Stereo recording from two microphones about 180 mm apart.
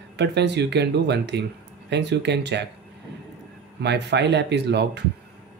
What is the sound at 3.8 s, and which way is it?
Speech, 70° right (ahead or behind).